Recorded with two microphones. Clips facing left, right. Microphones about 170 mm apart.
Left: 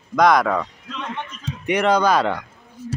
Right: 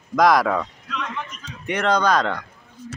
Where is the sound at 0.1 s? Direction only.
Centre (ahead or behind).